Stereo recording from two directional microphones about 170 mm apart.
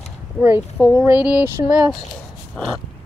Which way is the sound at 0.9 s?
10° right (ahead or behind).